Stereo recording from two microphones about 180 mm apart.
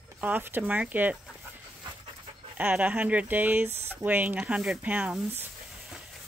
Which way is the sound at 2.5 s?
10° right (ahead or behind).